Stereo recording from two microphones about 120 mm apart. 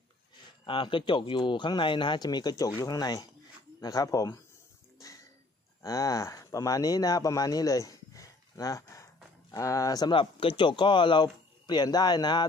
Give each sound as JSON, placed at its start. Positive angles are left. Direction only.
{"t": 0.7, "sound": "speech", "side_deg": 45}
{"t": 5.8, "sound": "speech", "side_deg": 25}